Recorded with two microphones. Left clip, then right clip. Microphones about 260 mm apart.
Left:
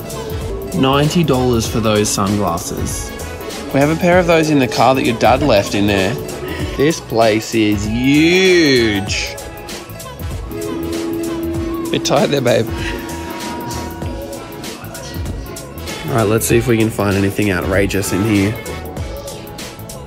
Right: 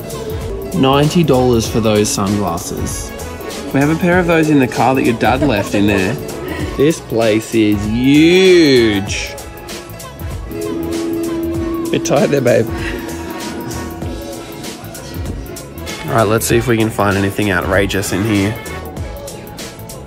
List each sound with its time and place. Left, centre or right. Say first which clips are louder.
0.7 s speech: right 2 dB; centre
12.1 s music: right 1 dB; centre
15.9 s speech: right 2 dB; centre